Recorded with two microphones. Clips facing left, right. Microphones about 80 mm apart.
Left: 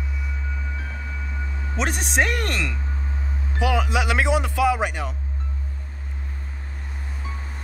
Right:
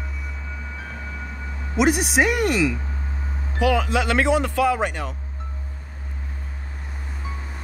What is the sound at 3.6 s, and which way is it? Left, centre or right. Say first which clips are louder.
Speech: right 2 dB; centre.